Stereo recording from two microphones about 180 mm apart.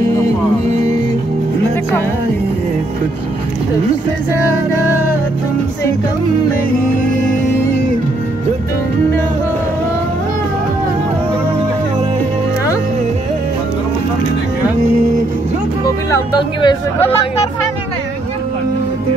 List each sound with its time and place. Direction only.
0.7 s music: 40° right (ahead or behind)
16.1 s speech: 25° left (ahead or behind)